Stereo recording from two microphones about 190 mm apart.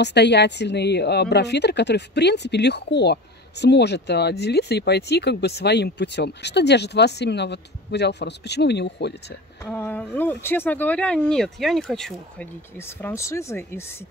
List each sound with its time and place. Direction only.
0.0 s speech: 65° left (ahead or behind)
9.7 s speech: 10° left (ahead or behind)
13.0 s speech: 15° left (ahead or behind)